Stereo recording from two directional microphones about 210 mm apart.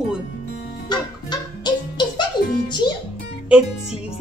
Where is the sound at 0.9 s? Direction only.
20° left (ahead or behind).